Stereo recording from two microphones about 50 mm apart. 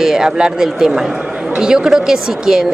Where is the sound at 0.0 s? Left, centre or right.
Centre.